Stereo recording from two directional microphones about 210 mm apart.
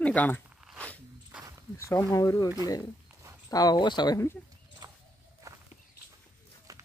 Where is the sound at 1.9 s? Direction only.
15° left (ahead or behind).